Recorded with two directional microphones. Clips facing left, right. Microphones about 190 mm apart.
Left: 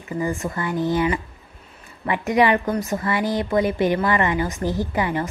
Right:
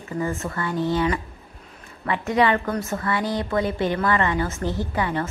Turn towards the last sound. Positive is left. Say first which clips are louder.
# left 2 dB
turn(degrees=15)  # may be behind; listen again after turning